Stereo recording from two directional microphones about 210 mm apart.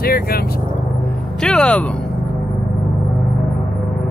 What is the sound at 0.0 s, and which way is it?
Vehicle, 45° left (ahead or behind).